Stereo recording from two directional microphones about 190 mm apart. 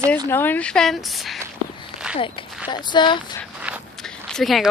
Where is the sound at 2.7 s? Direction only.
25° left (ahead or behind).